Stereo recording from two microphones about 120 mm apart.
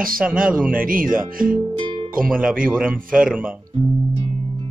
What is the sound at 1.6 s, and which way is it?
Music, 40° right (ahead or behind).